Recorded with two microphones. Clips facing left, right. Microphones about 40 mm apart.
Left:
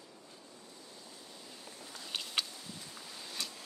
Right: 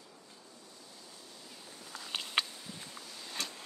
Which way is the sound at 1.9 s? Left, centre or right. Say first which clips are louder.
Right 2 dB; centre.